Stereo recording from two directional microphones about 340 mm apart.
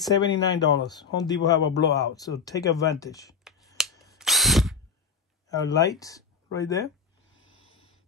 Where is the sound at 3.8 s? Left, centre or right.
Centre.